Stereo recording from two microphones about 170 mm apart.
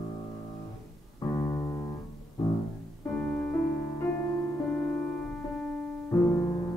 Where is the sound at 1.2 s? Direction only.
20° left (ahead or behind).